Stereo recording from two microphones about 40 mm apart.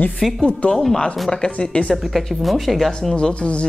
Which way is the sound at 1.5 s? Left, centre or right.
Left.